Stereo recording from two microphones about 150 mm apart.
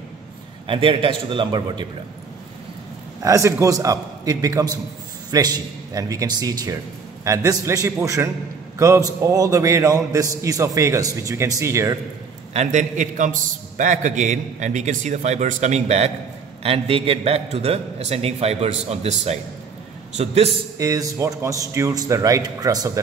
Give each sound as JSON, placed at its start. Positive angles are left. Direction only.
{"t": 0.7, "sound": "a man's voice", "side_deg": -35}
{"t": 3.2, "sound": "a man's voice", "side_deg": -20}
{"t": 12.5, "sound": "a man's voice", "side_deg": -55}
{"t": 20.7, "sound": "a man's voice", "side_deg": -25}